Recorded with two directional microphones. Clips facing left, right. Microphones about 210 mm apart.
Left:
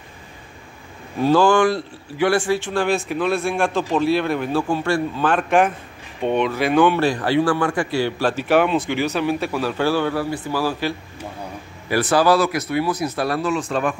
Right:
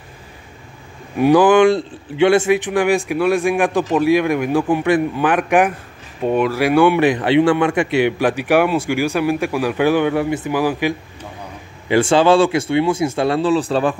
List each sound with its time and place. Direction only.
1.2 s speech: 15° right (ahead or behind); by 13.9 s 35° right (ahead or behind)